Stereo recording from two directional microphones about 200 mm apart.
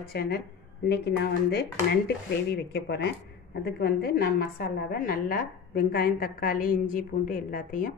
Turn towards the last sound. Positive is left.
turn(degrees=45)  # may be behind; listen again after turning